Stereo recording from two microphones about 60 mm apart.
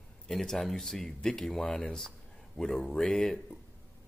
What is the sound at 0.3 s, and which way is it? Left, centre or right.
Speech, centre.